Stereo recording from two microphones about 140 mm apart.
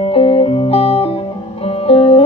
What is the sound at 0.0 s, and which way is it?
Music, 45° left (ahead or behind).